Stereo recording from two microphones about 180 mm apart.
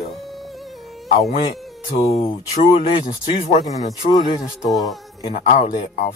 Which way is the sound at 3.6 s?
20° left (ahead or behind).